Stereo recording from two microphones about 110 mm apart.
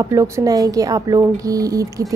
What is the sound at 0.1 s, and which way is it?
Speech, 35° right (ahead or behind).